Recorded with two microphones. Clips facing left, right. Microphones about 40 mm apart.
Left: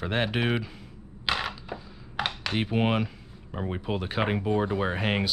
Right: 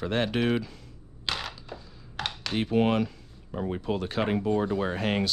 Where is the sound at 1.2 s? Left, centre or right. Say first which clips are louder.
Left 4 dB; centre.